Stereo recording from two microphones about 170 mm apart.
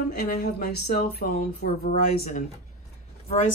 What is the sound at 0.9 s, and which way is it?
Speech, 75° left (ahead or behind).